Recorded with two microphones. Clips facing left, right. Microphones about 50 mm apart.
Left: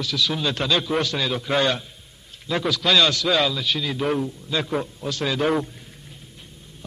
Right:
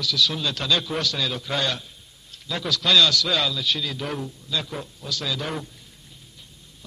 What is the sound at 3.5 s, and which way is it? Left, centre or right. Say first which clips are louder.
Speech: left 2 dB; centre.